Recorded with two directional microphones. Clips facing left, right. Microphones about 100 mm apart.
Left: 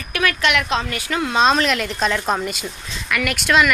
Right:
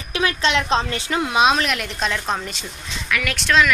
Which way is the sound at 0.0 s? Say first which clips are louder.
Left 1 dB; 20° right (ahead or behind).